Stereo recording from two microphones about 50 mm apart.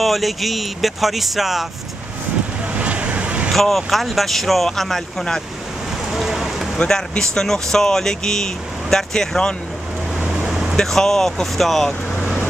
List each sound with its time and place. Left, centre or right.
0.0 s speech: centre
2.8 s vehicle: right
3.5 s speech: centre
6.1 s a sound: centre
6.9 s speech: centre
10.5 s a sound: centre
10.8 s speech: centre